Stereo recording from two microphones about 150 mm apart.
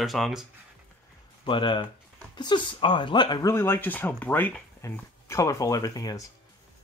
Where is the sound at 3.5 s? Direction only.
15° left (ahead or behind).